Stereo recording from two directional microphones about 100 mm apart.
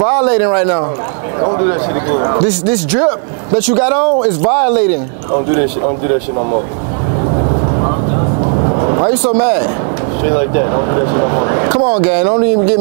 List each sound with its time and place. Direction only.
0.0 s speech: 25° right (ahead or behind)
8.6 s vehicle: 30° right (ahead or behind)
10.3 s speech: 25° right (ahead or behind)